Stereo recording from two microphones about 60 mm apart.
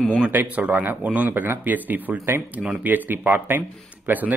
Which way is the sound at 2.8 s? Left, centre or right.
Right.